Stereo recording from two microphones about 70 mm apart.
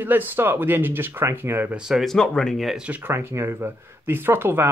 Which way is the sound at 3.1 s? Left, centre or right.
Right.